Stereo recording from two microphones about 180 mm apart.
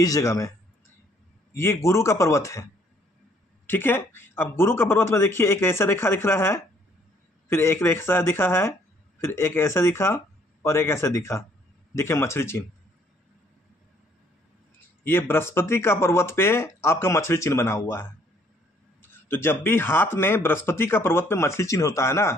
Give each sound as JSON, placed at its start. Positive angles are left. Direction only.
{"t": 0.0, "sound": "speech", "side_deg": 15}
{"t": 1.5, "sound": "speech", "side_deg": 15}
{"t": 3.6, "sound": "speech", "side_deg": 10}
{"t": 15.0, "sound": "speech", "side_deg": 10}